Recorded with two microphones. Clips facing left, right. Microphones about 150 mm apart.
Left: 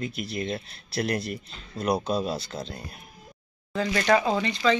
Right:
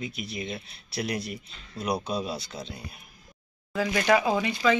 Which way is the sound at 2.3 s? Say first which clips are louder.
Left 3 dB; 25° left (ahead or behind).